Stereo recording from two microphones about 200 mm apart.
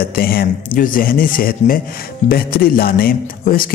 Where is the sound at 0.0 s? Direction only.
50° left (ahead or behind).